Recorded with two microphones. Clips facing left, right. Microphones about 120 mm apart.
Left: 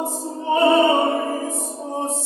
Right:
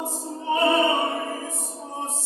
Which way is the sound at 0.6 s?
25° left (ahead or behind).